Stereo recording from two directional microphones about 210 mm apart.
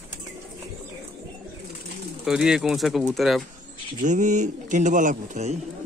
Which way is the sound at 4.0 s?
35° right (ahead or behind).